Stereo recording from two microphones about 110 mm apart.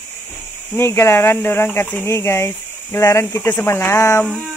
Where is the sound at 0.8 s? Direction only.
25° left (ahead or behind).